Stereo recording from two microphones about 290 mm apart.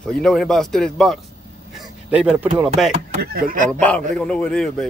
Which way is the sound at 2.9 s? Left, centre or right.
Right.